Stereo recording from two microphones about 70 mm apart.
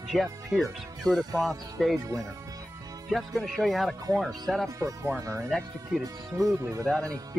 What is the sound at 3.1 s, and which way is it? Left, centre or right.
Speech, centre.